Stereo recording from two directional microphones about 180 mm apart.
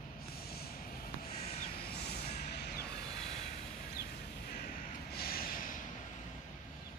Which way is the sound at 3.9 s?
60° left (ahead or behind).